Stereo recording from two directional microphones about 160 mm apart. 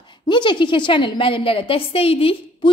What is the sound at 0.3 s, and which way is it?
A woman's voice, 30° left (ahead or behind).